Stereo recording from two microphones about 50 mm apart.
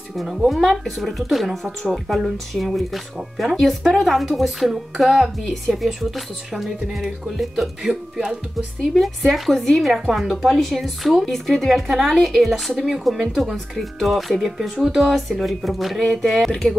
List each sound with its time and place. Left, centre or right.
0.1 s speech: centre
16.0 s speech: centre